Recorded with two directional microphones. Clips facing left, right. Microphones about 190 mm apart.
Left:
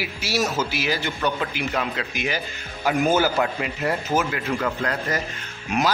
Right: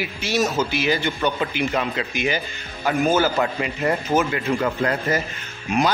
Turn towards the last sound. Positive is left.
turn(degrees=0)  # may be behind; listen again after turning